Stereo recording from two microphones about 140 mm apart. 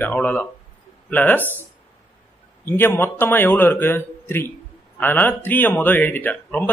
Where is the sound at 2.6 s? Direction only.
15° left (ahead or behind).